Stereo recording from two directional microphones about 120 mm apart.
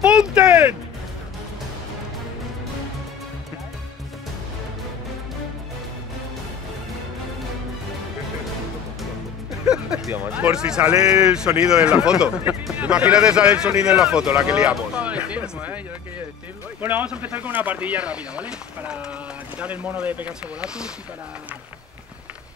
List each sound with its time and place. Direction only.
0.0 s music: 5° right (ahead or behind)
9.7 s a sound: 5° right (ahead or behind)
11.1 s a man's voice: 5° right (ahead or behind)
16.8 s a man's voice: 10° right (ahead or behind)